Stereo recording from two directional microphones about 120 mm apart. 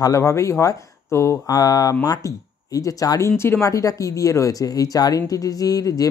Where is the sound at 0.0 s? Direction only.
25° left (ahead or behind).